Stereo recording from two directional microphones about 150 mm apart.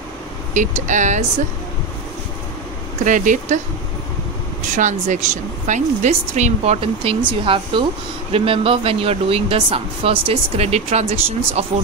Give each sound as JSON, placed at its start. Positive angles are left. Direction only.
{"t": 0.6, "sound": "speech", "side_deg": -55}
{"t": 3.1, "sound": "speech", "side_deg": -55}
{"t": 4.7, "sound": "a woman's voice", "side_deg": -55}